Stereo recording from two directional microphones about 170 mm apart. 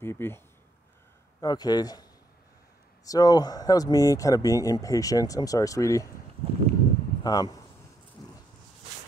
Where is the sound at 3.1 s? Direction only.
20° left (ahead or behind).